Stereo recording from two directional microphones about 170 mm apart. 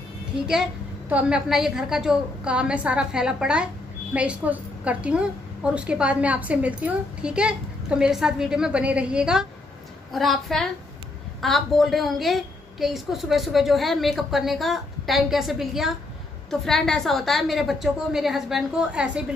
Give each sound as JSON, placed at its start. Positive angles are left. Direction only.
{"t": 0.5, "sound": "a woman's voice", "side_deg": -5}